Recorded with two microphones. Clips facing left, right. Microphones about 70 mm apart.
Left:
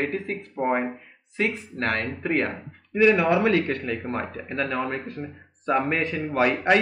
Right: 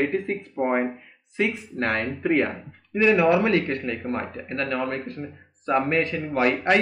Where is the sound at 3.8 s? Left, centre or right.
Centre.